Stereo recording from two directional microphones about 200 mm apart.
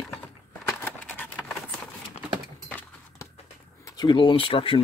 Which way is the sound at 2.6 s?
10° left (ahead or behind).